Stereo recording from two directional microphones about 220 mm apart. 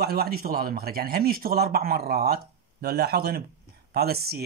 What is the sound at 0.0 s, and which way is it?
Speech, 45° right (ahead or behind).